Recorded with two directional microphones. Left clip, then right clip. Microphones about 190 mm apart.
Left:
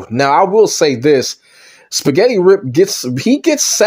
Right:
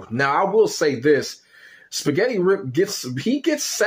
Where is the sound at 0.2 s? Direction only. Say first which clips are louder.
Left 8 dB; 35° left (ahead or behind).